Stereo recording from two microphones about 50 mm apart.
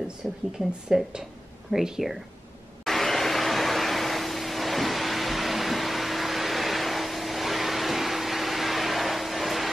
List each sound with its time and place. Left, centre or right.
0.8 s speech: centre
2.8 s vacuum cleaner: centre